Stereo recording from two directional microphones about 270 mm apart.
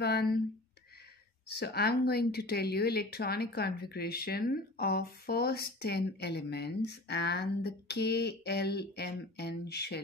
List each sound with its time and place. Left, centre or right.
0.0 s speech: left
1.6 s speech: left